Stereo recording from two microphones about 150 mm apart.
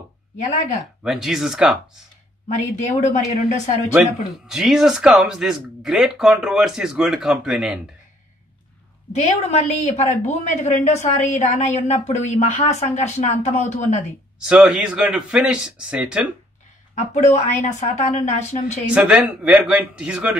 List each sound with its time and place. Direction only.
1.0 s speech: centre (ahead or behind)
2.4 s speech: 50° left (ahead or behind)
4.0 s speech: 5° right (ahead or behind)
9.1 s speech: 45° left (ahead or behind)
14.4 s a man's voice: 5° right (ahead or behind)
16.9 s speech: 50° left (ahead or behind)
18.9 s a man's voice: 10° right (ahead or behind)